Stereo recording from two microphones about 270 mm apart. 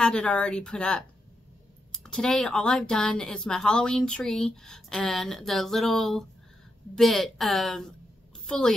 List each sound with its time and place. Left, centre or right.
0.0 s speech: centre